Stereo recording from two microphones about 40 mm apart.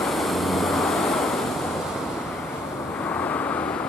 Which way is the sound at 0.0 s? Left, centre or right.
Centre.